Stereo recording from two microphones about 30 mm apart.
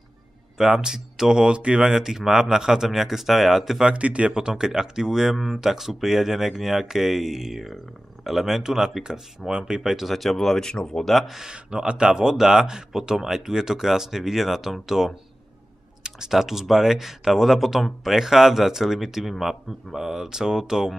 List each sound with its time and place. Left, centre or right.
0.6 s speech: centre
1.5 s speech: right; by 3.8 s centre
3.8 s speech: right
4.3 s speech: right
5.3 s speech: centre; by 9.8 s right
9.8 s speech: centre
10.1 s speech: centre
10.6 s speech: left
11.4 s speech: right
16.3 s speech: centre